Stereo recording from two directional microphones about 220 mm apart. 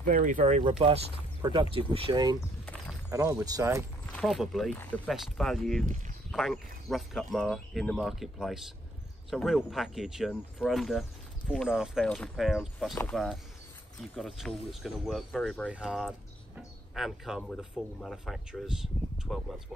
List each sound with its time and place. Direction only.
0.0 s speech: 35° right (ahead or behind); by 2.3 s 20° right (ahead or behind)
2.6 s walk: 5° left (ahead or behind)
3.1 s speech: 15° right (ahead or behind)
4.0 s speech: centre (ahead or behind)